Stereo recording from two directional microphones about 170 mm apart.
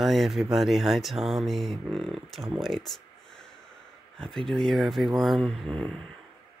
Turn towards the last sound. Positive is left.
turn(degrees=5)  # may be behind; listen again after turning